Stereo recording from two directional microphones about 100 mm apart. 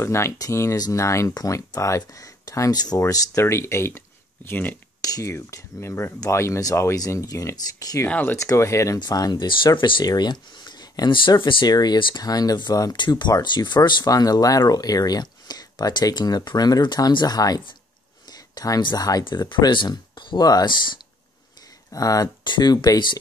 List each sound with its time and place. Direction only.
0.0 s speech: 25° left (ahead or behind)
5.0 s speech: 35° left (ahead or behind)
8.1 s speech: 20° left (ahead or behind)
9.0 s speech: 40° left (ahead or behind)
21.9 s speech: 35° left (ahead or behind)
22.4 s speech: 50° left (ahead or behind)